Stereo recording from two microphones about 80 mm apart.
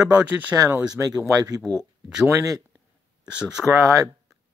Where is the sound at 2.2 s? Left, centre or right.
Right.